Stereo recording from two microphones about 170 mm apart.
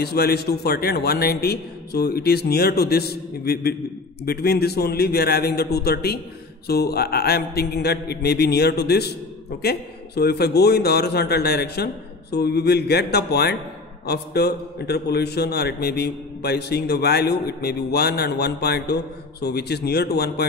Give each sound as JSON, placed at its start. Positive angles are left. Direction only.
{"t": 0.0, "sound": "a man's voice", "side_deg": 70}